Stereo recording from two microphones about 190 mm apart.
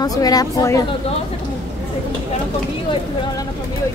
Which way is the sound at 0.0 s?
20° left (ahead or behind).